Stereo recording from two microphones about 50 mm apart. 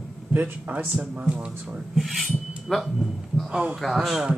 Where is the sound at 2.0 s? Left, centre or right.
Centre.